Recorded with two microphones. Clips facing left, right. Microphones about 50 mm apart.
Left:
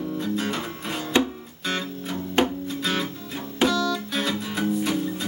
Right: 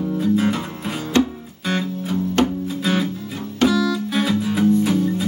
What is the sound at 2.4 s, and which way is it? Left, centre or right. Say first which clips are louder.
Music: right 2 dB; centre.